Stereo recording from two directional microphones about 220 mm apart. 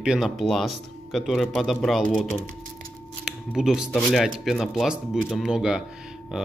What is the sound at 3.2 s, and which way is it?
Speech, centre (ahead or behind).